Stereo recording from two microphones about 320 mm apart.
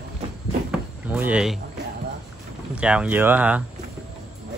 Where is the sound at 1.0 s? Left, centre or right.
Centre.